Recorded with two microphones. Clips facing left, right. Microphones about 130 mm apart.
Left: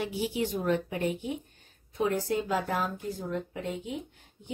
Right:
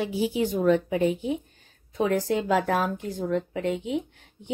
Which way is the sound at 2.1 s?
90° right.